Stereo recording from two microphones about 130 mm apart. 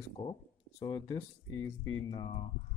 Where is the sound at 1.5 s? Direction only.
20° left (ahead or behind).